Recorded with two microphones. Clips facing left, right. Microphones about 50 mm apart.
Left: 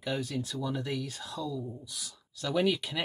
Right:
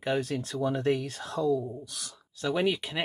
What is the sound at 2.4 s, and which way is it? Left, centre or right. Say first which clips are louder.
Speech: right 1 dB; right.